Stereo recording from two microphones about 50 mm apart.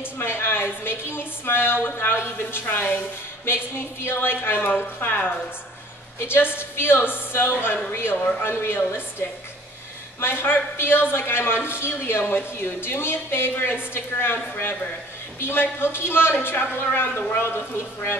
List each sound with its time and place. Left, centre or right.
0.2 s speech: left
6.1 s speech: left